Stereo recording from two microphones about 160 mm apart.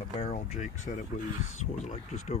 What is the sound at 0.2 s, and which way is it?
Speech, 50° left (ahead or behind).